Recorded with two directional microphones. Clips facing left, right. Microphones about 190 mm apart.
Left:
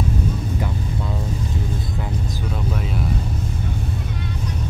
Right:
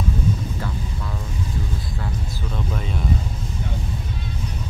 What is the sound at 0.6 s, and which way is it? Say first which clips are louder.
Vehicle: left 4 dB; 25° left (ahead or behind).